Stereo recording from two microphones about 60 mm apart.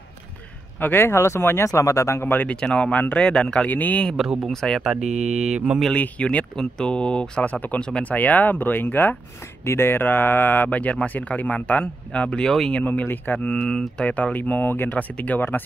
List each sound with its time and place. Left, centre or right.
0.7 s speech: left
1.7 s speech: left
2.2 s speech: left
2.5 s speech: centre
3.0 s speech: left
3.3 s speech: centre
3.6 s speech: left
4.5 s speech: centre
4.8 s mantra: centre
5.9 s speech: left
6.5 s speech: centre; by 8.8 s left
9.7 s speech: left; by 12.5 s centre
12.8 s speech: left